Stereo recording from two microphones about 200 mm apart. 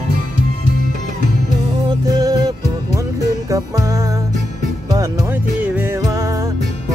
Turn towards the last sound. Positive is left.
turn(degrees=-15)  # may be behind; listen again after turning